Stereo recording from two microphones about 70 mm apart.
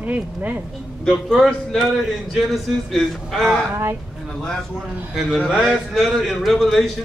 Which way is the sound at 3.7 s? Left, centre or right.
Right.